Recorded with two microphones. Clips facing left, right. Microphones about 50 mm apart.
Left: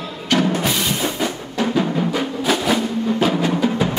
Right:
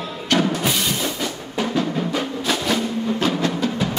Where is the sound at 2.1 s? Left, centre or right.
Centre.